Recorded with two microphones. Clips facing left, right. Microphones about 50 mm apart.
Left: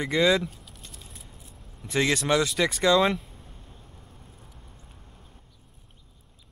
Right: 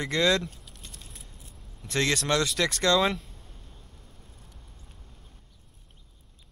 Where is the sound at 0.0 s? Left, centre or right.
Centre.